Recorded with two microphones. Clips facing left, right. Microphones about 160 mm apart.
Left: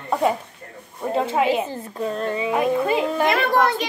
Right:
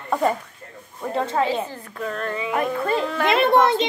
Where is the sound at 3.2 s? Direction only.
20° right (ahead or behind).